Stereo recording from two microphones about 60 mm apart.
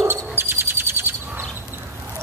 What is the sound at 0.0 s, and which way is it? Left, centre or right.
Owl, right.